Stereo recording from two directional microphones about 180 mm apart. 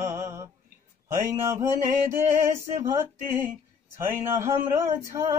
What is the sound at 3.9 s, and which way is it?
Mantra, 15° right (ahead or behind).